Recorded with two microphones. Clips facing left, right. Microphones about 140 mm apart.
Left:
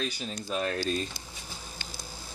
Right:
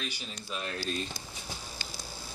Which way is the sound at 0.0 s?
40° left (ahead or behind).